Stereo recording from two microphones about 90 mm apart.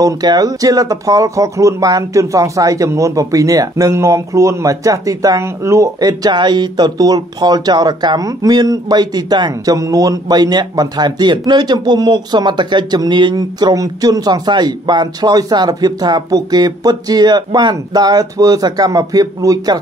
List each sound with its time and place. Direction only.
0.0 s speech: 45° right (ahead or behind)
5.9 s speech: 45° right (ahead or behind)
9.8 s speech: 40° right (ahead or behind)